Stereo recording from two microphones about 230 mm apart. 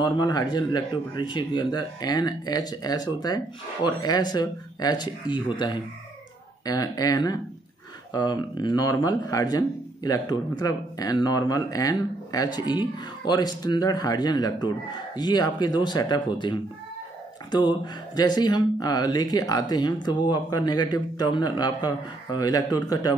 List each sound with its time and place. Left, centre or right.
0.0 s speech: centre